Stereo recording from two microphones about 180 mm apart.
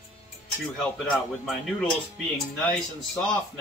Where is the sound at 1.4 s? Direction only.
Centre (ahead or behind).